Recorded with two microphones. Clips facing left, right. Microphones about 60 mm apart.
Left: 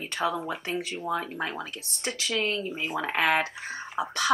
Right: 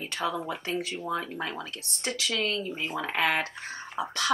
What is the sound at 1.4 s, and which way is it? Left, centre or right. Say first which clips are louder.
A woman's voice: left 2 dB; centre.